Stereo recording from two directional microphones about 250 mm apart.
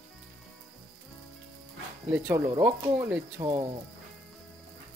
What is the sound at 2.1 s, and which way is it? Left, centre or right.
Speech, centre.